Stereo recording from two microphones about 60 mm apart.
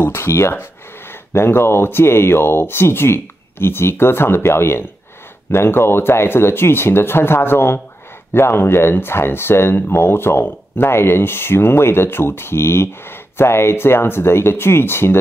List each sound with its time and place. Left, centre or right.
0.0 s speech: left